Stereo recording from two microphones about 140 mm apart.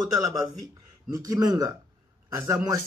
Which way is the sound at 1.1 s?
25° right (ahead or behind).